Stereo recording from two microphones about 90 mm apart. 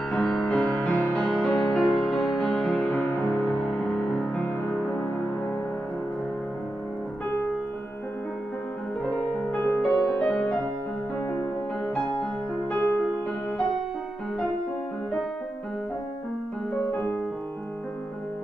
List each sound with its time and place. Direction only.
0.1 s music: 5° left (ahead or behind); by 3.4 s 25° left (ahead or behind)
3.4 s music: 5° left (ahead or behind)
4.4 s music: 20° left (ahead or behind)
9.6 s music: 20° left (ahead or behind)
12.7 s music: 20° left (ahead or behind)